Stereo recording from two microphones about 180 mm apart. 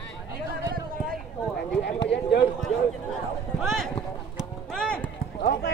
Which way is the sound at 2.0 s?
70° left (ahead or behind).